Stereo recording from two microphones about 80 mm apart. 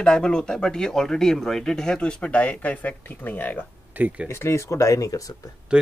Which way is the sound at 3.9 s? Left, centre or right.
Centre.